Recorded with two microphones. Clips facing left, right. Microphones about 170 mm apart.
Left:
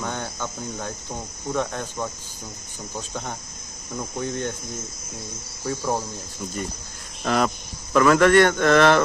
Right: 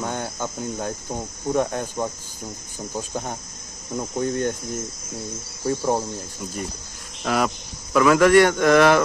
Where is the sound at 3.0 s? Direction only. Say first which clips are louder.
Right 3 dB; 15° right (ahead or behind).